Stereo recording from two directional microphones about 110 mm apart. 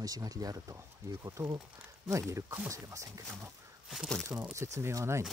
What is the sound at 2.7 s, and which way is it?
Speech, 30° right (ahead or behind).